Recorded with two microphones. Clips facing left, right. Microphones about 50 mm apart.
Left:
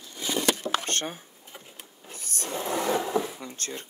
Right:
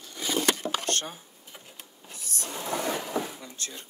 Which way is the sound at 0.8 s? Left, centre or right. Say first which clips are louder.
Even; left.